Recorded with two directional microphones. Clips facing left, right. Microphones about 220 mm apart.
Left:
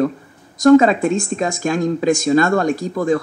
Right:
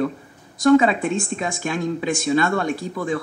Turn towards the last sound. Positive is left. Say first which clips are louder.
# left 6 dB
turn(degrees=45)  # may be behind; listen again after turning